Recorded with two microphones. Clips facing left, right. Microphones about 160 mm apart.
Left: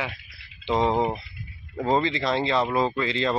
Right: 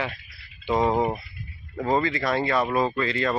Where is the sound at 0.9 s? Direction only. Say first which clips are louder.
Even; 5° right (ahead or behind).